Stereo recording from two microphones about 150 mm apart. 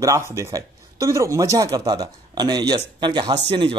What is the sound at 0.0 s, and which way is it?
A man's voice, 20° right (ahead or behind).